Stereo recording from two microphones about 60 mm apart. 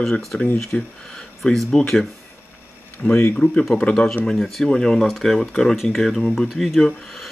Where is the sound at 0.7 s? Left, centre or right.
Centre.